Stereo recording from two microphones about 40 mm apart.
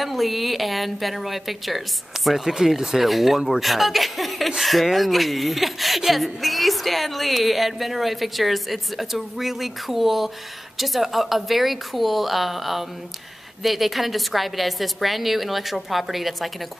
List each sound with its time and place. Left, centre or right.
0.0 s speech: centre